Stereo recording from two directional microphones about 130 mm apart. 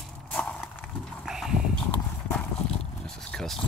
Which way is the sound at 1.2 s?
5° right (ahead or behind).